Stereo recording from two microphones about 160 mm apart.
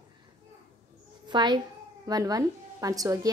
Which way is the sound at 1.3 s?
30° right (ahead or behind).